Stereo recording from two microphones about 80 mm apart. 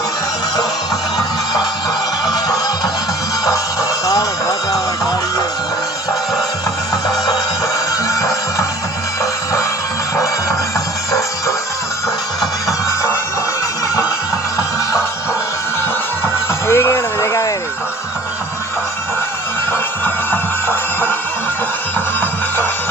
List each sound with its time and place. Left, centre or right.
4.0 s music: left
8.1 s music: left
11.1 s music: left
16.6 s a sound: left
20.2 s music: left